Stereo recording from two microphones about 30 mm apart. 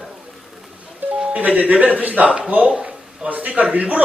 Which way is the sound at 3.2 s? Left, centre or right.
Right.